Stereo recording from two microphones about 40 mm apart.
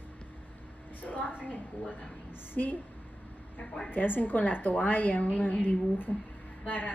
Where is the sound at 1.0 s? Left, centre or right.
Left.